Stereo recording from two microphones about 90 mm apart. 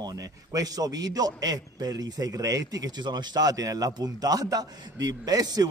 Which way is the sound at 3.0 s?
55° right (ahead or behind).